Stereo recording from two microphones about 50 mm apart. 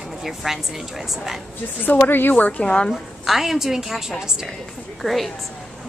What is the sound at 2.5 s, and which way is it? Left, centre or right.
Speech, left.